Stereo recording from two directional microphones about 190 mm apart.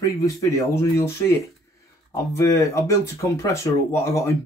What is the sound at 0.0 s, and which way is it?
Speech, 15° left (ahead or behind).